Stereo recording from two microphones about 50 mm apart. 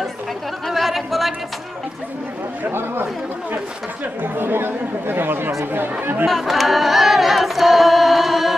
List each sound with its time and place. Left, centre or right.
0.7 s chatter: centre
4.2 s speech: right
6.2 s singing: centre